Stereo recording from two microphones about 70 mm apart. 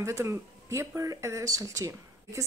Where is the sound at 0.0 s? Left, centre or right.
Right.